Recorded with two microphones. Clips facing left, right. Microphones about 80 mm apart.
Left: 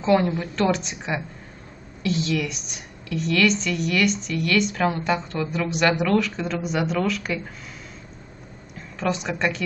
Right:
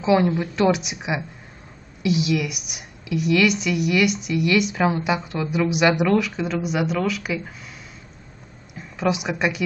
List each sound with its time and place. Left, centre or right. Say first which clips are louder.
0.0 s a woman's voice: right 1 dB; centre
8.7 s a woman's voice: right 3 dB; centre